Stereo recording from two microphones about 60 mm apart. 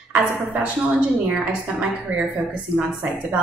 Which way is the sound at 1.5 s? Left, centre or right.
Right.